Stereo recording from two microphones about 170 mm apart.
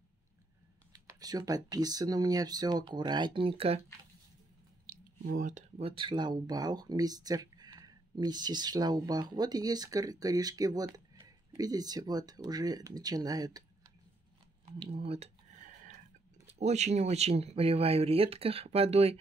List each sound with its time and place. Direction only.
0.9 s speech: 20° right (ahead or behind)
5.3 s speech: 50° right (ahead or behind); by 13.9 s 20° right (ahead or behind)
14.9 s a sound: 35° right (ahead or behind)
16.4 s speech: 40° right (ahead or behind)